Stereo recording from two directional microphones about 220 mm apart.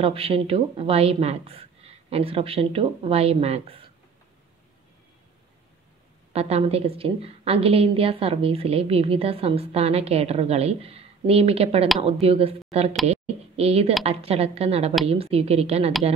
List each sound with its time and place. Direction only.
0.0 s a woman's voice: 25° right (ahead or behind)
6.3 s a woman's voice: 25° right (ahead or behind)
13.6 s a woman's voice: 25° right (ahead or behind)